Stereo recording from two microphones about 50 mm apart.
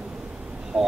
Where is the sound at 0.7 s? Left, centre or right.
Right.